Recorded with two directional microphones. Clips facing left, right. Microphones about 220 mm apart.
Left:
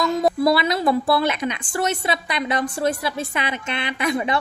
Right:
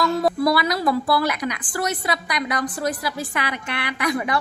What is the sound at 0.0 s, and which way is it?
A woman's voice, 25° left (ahead or behind).